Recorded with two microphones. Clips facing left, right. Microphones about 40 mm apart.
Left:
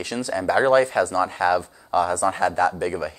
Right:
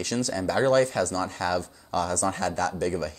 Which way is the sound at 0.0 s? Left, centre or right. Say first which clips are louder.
Left 3 dB; centre.